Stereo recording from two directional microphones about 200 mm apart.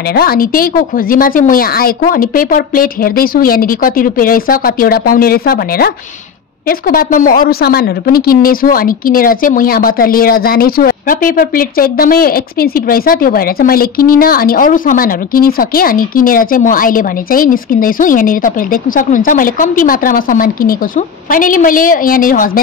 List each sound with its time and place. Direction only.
0.1 s a woman's voice: 50° left (ahead or behind)